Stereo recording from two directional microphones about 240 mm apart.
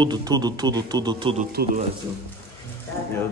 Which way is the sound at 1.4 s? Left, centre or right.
Right.